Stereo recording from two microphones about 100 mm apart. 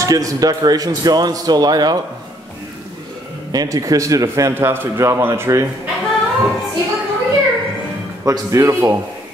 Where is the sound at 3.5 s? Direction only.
35° right (ahead or behind).